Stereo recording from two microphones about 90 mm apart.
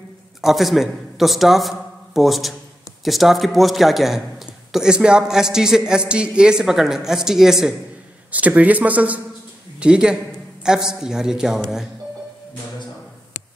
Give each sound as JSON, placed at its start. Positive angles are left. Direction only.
{"t": 0.4, "sound": "a man's voice", "side_deg": -5}
{"t": 8.3, "sound": "a man's voice", "side_deg": -15}